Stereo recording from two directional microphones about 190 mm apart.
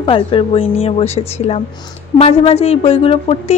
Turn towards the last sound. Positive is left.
turn(degrees=30)  # may be behind; listen again after turning